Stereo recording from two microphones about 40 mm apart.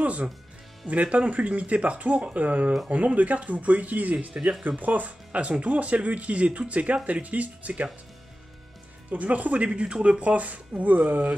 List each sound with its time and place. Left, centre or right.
0.0 s speech: right
4.3 s speech: right
4.6 s speech: right
9.1 s speech: right
9.7 s speech: right
10.2 s speech: right